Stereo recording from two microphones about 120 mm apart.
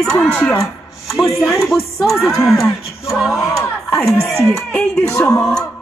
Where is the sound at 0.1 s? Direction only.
15° left (ahead or behind).